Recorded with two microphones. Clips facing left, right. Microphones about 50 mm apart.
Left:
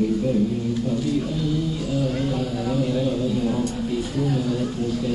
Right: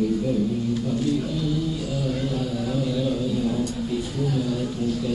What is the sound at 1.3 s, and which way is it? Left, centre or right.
Speech, centre.